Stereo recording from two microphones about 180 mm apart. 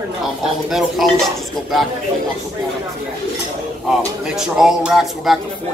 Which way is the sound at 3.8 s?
5° right (ahead or behind).